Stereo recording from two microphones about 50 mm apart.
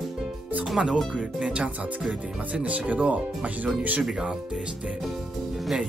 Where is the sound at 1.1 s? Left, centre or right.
Right.